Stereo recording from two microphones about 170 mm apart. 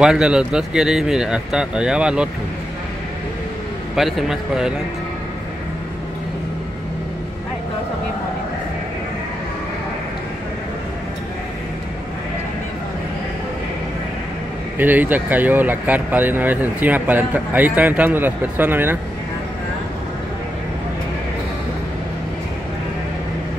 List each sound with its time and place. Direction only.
0.0 s speech: 5° right (ahead or behind)
3.9 s speech: centre (ahead or behind)
14.8 s speech: 10° right (ahead or behind)